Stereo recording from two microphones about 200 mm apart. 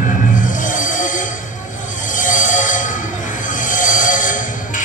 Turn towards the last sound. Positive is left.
turn(degrees=40)  # may be behind; listen again after turning